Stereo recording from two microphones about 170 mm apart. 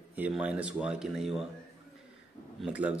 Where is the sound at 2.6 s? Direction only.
5° right (ahead or behind).